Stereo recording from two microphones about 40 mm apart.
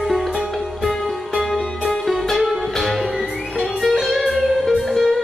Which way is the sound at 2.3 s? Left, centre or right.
Centre.